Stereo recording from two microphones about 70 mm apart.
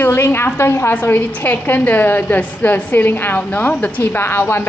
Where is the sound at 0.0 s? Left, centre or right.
Left.